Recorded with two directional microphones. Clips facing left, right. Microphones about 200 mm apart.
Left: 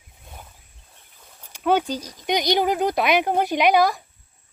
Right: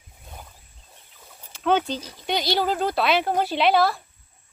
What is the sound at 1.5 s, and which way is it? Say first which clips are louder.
Speech: left 1 dB; 10° left (ahead or behind).